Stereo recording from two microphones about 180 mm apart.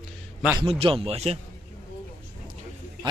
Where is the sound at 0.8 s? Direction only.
30° right (ahead or behind).